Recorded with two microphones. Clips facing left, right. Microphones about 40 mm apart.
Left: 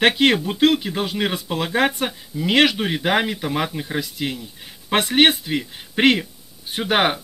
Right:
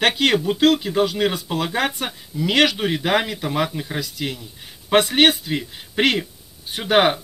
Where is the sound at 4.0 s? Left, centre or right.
Left.